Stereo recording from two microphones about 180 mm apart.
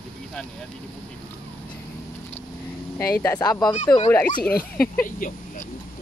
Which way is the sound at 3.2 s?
15° left (ahead or behind).